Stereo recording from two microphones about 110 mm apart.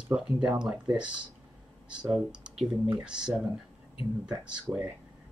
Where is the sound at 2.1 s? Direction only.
5° right (ahead or behind).